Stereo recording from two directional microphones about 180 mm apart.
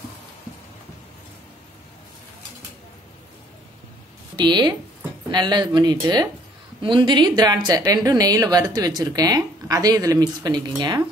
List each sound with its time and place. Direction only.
4.4 s a woman's voice: 25° right (ahead or behind)